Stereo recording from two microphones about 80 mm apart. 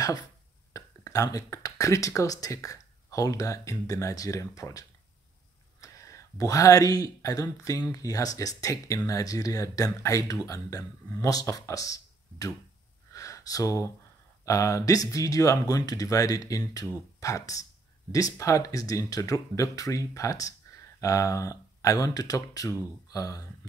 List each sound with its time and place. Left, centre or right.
0.7 s speech: left
13.1 s a sound: left
14.4 s speech: left